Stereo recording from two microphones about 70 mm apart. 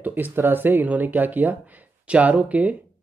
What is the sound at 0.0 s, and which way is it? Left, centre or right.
Speech, right.